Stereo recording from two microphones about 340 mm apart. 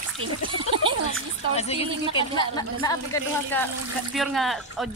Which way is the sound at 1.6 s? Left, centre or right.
Centre.